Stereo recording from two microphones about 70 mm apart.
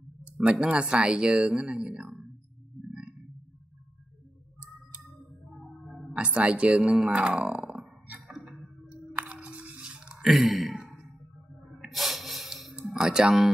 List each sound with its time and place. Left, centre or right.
0.4 s speech: centre
2.9 s a sound: centre
5.6 s music: centre
6.3 s speech: centre
7.6 s burping: centre
9.3 s a sound: centre
12.7 s speech: centre